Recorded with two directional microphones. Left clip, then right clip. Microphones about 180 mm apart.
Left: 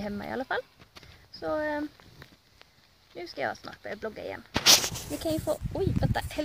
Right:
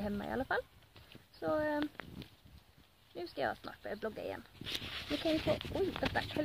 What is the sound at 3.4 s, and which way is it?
Speech, centre (ahead or behind).